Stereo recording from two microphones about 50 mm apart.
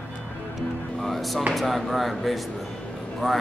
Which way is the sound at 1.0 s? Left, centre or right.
Centre.